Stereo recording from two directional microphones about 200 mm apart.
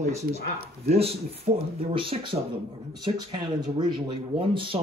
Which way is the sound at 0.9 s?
30° right (ahead or behind).